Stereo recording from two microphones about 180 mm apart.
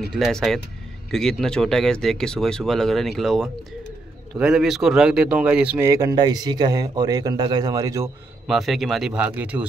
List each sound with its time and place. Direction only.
0.1 s speech: centre (ahead or behind); by 8.1 s 20° right (ahead or behind)
8.5 s speech: centre (ahead or behind)